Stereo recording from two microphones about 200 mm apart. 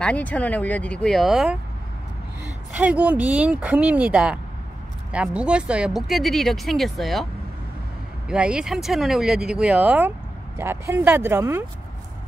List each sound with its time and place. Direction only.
0.0 s speech: 5° left (ahead or behind)
2.8 s speech: 5° right (ahead or behind)
8.3 s speech: 5° right (ahead or behind)